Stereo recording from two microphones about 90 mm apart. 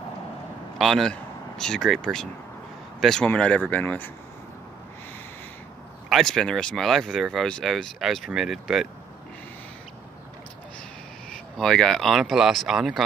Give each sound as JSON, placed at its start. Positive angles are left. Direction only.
{"t": 0.7, "sound": "speech", "side_deg": 0}
{"t": 6.0, "sound": "speech", "side_deg": 0}
{"t": 11.5, "sound": "speech", "side_deg": 5}